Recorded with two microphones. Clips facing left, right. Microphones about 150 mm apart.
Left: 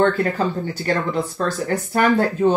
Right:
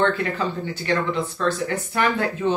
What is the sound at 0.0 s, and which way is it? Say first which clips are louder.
Speech: left 4 dB; 40° left (ahead or behind).